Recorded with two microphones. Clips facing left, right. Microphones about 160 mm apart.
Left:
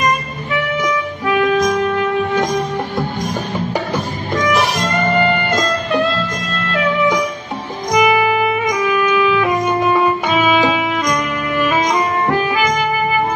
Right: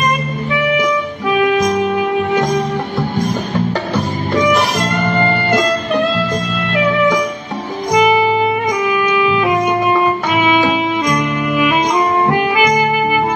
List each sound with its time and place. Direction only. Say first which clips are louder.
1.6 s music: right 1 dB; 10° right (ahead or behind)
4.5 s music: right 2 dB; centre (ahead or behind)
7.9 s music: right 2 dB; 20° right (ahead or behind)
11.5 s music: right 1 dB; 15° right (ahead or behind)